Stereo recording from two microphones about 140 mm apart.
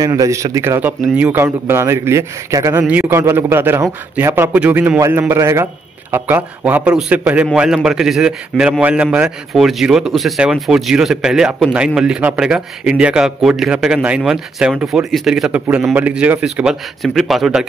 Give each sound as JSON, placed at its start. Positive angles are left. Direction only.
{"t": 0.0, "sound": "a man's voice", "side_deg": -25}